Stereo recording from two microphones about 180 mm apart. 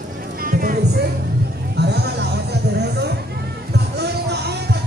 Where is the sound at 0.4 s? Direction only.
50° right (ahead or behind).